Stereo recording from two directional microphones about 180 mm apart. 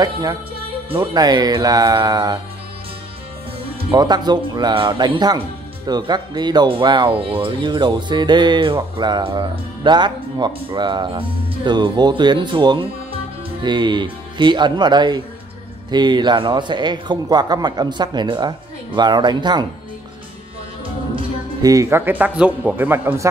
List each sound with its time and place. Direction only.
0.0 s speech: 20° right (ahead or behind)
3.9 s speech: 25° right (ahead or behind)
20.8 s speech: 30° right (ahead or behind); by 23.2 s 10° right (ahead or behind)